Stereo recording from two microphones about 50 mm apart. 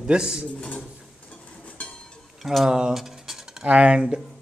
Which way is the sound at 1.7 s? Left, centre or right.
Left.